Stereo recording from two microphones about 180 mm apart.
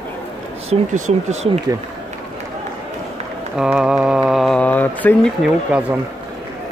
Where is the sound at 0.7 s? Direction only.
40° right (ahead or behind).